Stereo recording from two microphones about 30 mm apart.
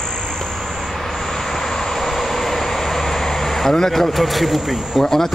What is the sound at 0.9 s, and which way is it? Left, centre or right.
Vehicle, centre.